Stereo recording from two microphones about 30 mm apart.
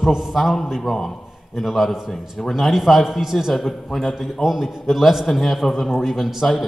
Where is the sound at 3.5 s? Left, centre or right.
Centre.